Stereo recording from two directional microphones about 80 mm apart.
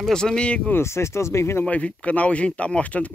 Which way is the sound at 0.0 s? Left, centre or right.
Centre.